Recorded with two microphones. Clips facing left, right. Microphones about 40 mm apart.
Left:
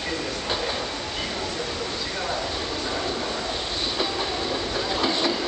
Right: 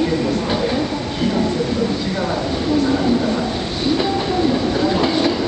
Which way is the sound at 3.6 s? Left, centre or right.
Centre.